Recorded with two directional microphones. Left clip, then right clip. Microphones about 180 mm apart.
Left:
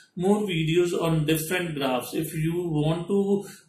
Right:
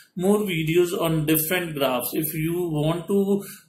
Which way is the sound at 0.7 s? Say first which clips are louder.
Right 2 dB; 45° right (ahead or behind).